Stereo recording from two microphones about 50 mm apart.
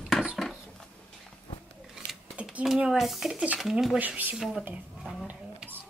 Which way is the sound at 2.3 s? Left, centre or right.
Right.